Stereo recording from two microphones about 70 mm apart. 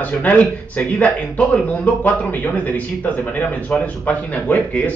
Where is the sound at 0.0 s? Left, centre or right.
Left.